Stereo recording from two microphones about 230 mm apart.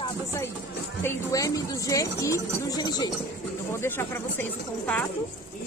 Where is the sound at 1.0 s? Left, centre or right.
Centre.